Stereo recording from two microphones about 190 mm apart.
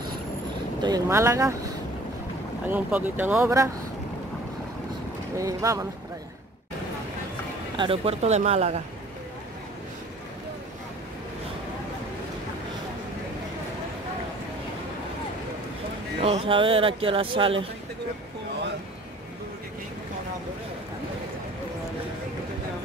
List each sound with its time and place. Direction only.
0.8 s speech: 15° right (ahead or behind)
2.7 s speech: 10° right (ahead or behind)
5.4 s speech: 15° right (ahead or behind)
7.7 s speech: 25° right (ahead or behind)
16.2 s speech: 30° right (ahead or behind)